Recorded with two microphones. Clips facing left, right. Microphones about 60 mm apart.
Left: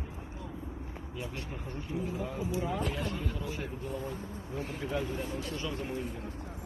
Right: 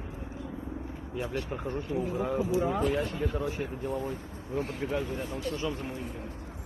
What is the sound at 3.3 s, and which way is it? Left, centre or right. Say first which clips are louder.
Speech: right 5 dB; right.